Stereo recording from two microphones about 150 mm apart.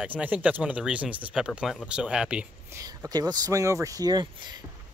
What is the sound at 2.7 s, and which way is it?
Speech, 20° right (ahead or behind).